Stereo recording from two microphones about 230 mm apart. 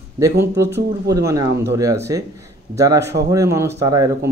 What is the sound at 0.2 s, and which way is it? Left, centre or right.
Speech, centre.